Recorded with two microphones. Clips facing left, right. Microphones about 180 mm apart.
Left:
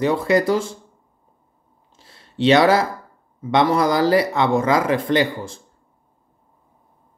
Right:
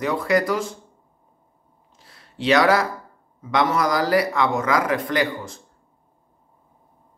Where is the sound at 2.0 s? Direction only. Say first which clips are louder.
Left 10 dB; 25° left (ahead or behind).